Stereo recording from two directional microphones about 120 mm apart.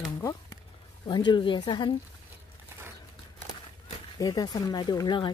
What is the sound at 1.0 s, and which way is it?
Speech, 40° left (ahead or behind).